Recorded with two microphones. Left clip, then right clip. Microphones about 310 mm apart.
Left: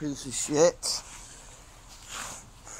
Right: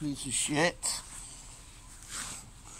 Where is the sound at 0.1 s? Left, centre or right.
Right.